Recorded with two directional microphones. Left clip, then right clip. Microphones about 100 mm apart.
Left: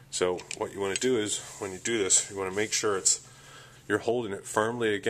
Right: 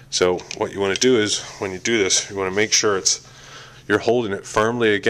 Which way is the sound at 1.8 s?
15° right (ahead or behind).